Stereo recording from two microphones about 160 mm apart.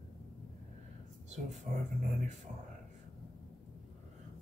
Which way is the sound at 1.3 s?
45° right (ahead or behind).